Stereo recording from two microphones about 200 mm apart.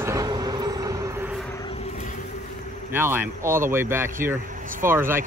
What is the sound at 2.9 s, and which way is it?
Speech, 10° right (ahead or behind).